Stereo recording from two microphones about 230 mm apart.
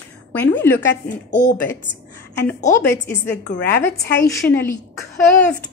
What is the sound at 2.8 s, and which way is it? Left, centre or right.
A woman's voice, centre.